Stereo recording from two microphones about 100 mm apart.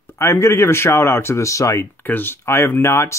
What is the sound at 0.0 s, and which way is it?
Speech, 30° left (ahead or behind).